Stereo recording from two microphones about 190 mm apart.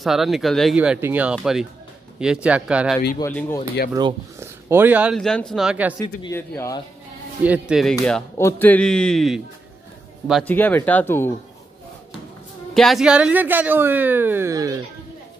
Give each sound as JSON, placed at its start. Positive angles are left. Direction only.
{"t": 0.0, "sound": "speech", "side_deg": 0}
{"t": 3.2, "sound": "speech", "side_deg": 15}
{"t": 3.9, "sound": "speech", "side_deg": -15}
{"t": 5.1, "sound": "speech", "side_deg": 5}
{"t": 6.2, "sound": "speech", "side_deg": 15}
{"t": 7.4, "sound": "speech", "side_deg": -5}
{"t": 8.4, "sound": "speech", "side_deg": 10}
{"t": 10.4, "sound": "speech", "side_deg": 10}
{"t": 12.7, "sound": "speech", "side_deg": 0}